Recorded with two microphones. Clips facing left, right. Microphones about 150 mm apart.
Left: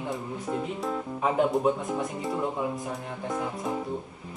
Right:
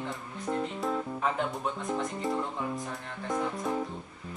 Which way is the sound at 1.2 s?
10° left (ahead or behind).